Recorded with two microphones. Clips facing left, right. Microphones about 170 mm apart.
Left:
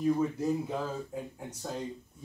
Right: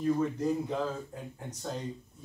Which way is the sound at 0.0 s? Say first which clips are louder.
Even; 5° left (ahead or behind).